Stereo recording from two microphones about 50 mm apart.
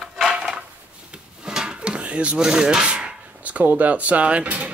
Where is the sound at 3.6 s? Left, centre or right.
Right.